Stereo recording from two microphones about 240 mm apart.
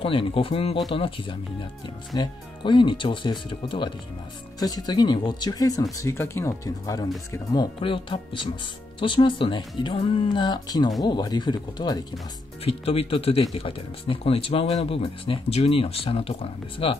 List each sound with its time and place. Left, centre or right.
0.0 s speech: left